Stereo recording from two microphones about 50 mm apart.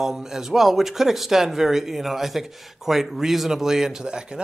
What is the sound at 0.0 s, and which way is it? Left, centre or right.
Speech, centre.